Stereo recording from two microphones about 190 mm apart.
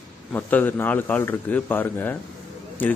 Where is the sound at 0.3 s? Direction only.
10° left (ahead or behind).